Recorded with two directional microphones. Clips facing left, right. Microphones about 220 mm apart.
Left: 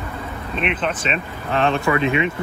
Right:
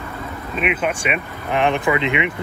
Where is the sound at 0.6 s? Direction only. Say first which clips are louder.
Right 2 dB; 5° right (ahead or behind).